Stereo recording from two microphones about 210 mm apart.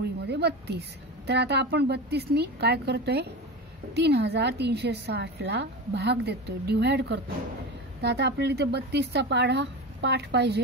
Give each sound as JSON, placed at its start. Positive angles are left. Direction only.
{"t": 0.0, "sound": "a woman's voice", "side_deg": -50}